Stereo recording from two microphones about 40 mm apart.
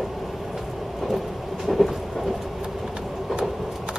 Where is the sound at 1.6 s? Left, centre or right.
Centre.